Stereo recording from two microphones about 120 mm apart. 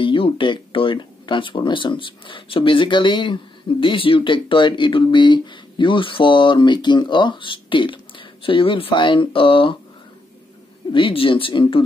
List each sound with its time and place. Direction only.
0.0 s speech: 45° left (ahead or behind)
10.9 s speech: 45° left (ahead or behind)